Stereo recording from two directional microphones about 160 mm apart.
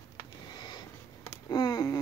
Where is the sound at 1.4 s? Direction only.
25° left (ahead or behind).